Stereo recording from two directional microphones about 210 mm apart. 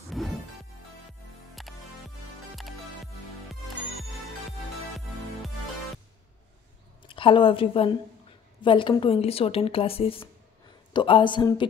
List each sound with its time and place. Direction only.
0.1 s music: centre (ahead or behind)
1.5 s music: centre (ahead or behind)
4.5 s music: centre (ahead or behind)
7.1 s a woman's voice: 25° left (ahead or behind)